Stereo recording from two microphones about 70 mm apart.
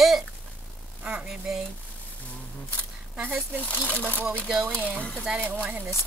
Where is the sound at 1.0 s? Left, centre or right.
Centre.